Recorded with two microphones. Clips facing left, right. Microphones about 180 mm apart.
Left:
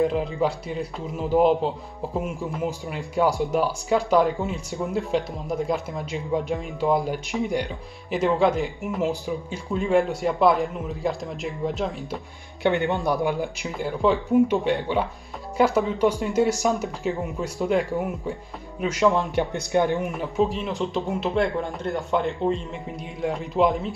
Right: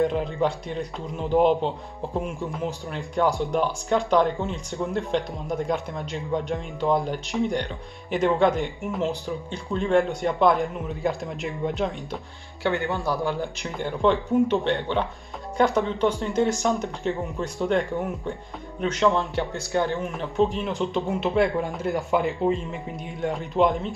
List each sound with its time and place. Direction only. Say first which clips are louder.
0.0 s speech: left 1 dB; centre (ahead or behind)
12.6 s speech: left 3 dB; 20° left (ahead or behind)
13.6 s speech: left 1 dB; centre (ahead or behind)
19.1 s speech: left 2 dB; 15° left (ahead or behind)
20.1 s speech: even; centre (ahead or behind)